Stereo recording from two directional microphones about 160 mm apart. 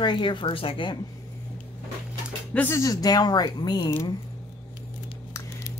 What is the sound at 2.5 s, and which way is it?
Speech, 15° left (ahead or behind).